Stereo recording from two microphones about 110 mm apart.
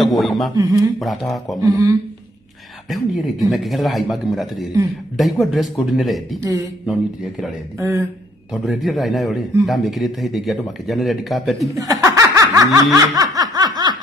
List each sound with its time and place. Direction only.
0.0 s speech: centre (ahead or behind)
0.6 s speech: 30° right (ahead or behind)
0.9 s speech: centre (ahead or behind)
1.6 s speech: 30° right (ahead or behind)
2.9 s speech: centre (ahead or behind)
7.8 s speech: 25° right (ahead or behind)
8.6 s speech: centre (ahead or behind)
11.7 s speech: 30° right (ahead or behind)
12.9 s snicker: 35° right (ahead or behind)